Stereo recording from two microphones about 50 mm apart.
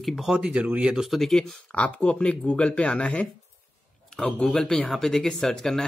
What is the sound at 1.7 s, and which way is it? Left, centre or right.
Speech, left.